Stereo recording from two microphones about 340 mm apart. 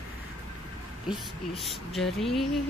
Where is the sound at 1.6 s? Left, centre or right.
Centre.